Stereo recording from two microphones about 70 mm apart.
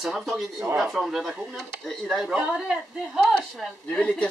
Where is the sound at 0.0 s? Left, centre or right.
Centre.